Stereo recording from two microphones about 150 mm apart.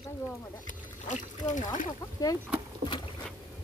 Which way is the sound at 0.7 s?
55° left (ahead or behind).